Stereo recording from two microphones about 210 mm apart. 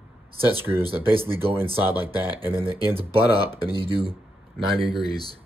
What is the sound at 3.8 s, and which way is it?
Speech, 25° right (ahead or behind).